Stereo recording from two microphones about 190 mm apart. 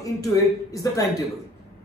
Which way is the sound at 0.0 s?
15° left (ahead or behind).